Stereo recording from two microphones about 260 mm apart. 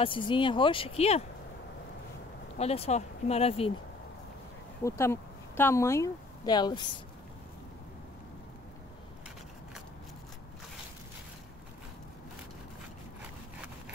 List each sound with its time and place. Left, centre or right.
0.0 s speech: centre
2.6 s speech: left
4.8 s speech: centre